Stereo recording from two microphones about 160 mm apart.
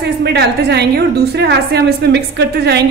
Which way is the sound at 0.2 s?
90° right.